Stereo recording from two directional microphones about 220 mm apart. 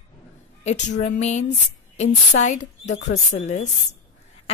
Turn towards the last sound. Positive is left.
turn(degrees=30)  # may be behind; listen again after turning